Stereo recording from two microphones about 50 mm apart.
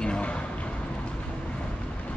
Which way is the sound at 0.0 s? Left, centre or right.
Centre.